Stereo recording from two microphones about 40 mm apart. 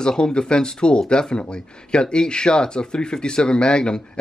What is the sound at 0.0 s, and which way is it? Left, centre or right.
Speech, left.